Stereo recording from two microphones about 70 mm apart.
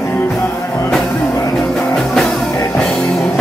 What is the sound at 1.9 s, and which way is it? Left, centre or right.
Music, centre.